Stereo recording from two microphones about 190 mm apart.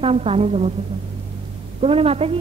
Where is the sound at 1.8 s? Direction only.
30° right (ahead or behind).